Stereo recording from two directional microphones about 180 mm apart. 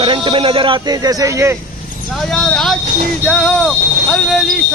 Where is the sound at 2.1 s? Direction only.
Centre (ahead or behind).